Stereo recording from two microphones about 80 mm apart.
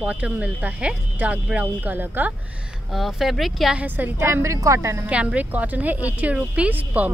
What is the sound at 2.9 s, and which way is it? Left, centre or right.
Speech, centre.